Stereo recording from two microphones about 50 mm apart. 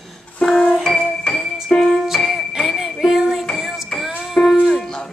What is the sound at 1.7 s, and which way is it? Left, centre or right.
Music, left.